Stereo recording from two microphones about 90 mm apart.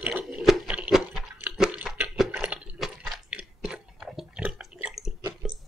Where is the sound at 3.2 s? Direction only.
15° right (ahead or behind).